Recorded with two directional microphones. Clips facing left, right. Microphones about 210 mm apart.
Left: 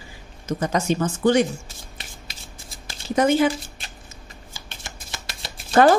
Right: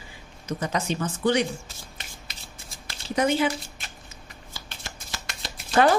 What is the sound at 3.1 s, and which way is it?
Speech, 45° left (ahead or behind).